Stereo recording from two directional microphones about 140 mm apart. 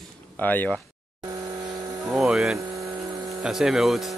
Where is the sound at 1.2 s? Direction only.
25° right (ahead or behind).